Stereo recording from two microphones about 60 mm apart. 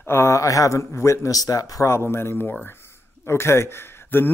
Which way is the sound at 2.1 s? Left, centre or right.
Left.